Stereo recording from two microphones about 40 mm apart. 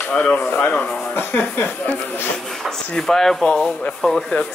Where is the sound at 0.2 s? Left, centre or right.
Left.